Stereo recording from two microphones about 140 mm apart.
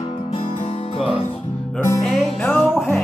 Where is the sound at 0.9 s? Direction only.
40° left (ahead or behind).